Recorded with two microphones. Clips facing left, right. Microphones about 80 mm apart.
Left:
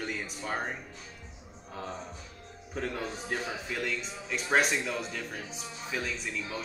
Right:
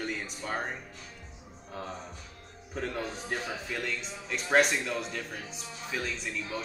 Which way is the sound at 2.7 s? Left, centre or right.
Centre.